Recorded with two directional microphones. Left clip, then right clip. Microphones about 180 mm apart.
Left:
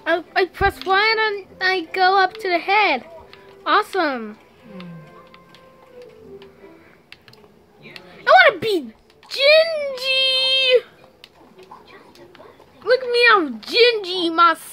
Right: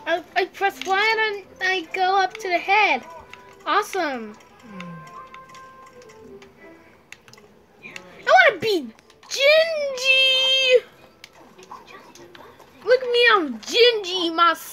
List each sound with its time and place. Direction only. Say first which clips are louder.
0.0 s a child's voice: left 3 dB; 25° left (ahead or behind)
8.1 s a sound: left 3 dB; 10° left (ahead or behind)
9.3 s a child's voice: left 2 dB; centre (ahead or behind)
12.8 s speech: left 2 dB; centre (ahead or behind)